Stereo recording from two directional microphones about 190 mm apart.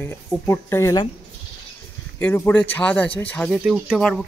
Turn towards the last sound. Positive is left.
turn(degrees=0)  # may be behind; listen again after turning